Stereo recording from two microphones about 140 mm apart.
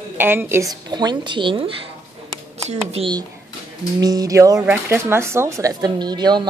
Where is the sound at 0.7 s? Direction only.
30° right (ahead or behind); by 3.1 s 45° right (ahead or behind).